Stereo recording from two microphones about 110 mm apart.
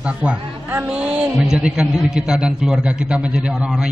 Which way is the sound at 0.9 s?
10° right (ahead or behind).